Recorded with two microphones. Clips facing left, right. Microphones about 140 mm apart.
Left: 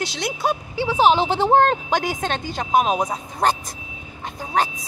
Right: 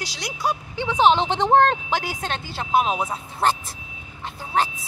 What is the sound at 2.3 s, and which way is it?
Speech, 15° left (ahead or behind).